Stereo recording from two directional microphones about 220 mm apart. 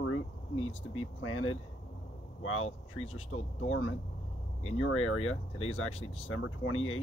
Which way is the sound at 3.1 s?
70° left (ahead or behind).